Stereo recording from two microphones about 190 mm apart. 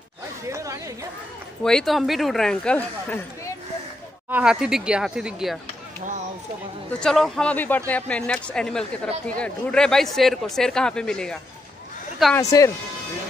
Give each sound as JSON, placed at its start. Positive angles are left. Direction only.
{"t": 0.5, "sound": "chatter", "side_deg": -15}
{"t": 1.6, "sound": "a man's voice", "side_deg": 5}
{"t": 4.3, "sound": "a man's voice", "side_deg": -5}
{"t": 7.0, "sound": "a man's voice", "side_deg": 0}
{"t": 12.4, "sound": "speech", "side_deg": 15}